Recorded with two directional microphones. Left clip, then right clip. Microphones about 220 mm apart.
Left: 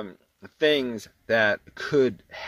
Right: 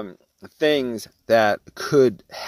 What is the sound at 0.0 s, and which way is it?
Speech, 35° right (ahead or behind).